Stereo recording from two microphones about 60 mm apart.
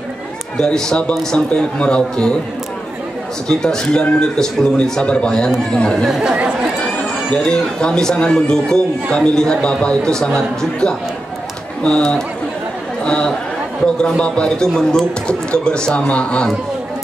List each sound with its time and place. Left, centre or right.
0.6 s a man's voice: centre
3.4 s a man's voice: centre
6.0 s speech: centre
6.3 s speech: centre
7.0 s a man's voice: centre